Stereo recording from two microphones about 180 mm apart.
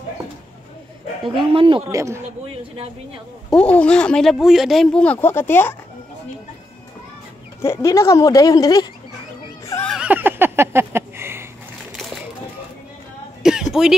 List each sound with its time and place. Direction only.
1.3 s speech: 30° right (ahead or behind)
1.9 s a man's voice: 15° right (ahead or behind)
3.4 s speech: 5° left (ahead or behind)
7.6 s speech: 15° left (ahead or behind)
9.8 s a sound: 5° right (ahead or behind)
13.4 s a sound: 5° right (ahead or behind)